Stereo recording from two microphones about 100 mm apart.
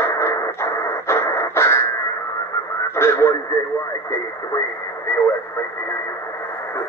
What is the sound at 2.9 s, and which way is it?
Speech, 25° left (ahead or behind).